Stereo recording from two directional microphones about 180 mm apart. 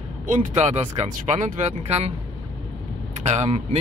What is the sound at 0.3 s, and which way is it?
Speech, 40° right (ahead or behind).